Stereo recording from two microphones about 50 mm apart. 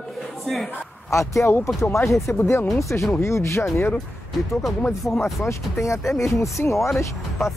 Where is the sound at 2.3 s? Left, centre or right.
Left.